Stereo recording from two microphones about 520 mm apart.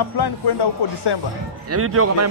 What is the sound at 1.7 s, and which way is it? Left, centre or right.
Speech, right.